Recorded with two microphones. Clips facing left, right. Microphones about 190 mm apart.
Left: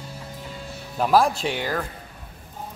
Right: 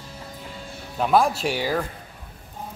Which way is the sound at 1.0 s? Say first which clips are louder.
Even; centre (ahead or behind).